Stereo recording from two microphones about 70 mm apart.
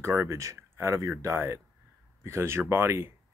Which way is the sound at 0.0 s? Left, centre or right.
Right.